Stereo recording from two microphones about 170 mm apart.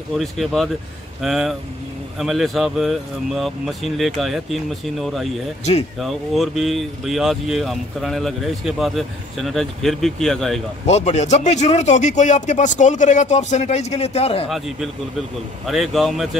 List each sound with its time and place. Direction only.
0.2 s speech: centre (ahead or behind)
10.9 s speech: 40° left (ahead or behind)
15.6 s speech: centre (ahead or behind)